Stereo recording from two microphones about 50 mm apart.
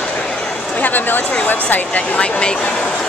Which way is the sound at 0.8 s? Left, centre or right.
Left.